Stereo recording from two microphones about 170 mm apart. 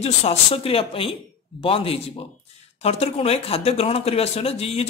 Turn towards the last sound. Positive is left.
turn(degrees=35)  # may be behind; listen again after turning